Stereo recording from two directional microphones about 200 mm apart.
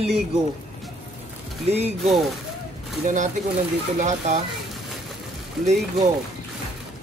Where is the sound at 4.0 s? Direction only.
40° right (ahead or behind).